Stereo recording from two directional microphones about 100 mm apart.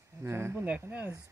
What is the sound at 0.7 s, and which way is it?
Speech, 15° right (ahead or behind).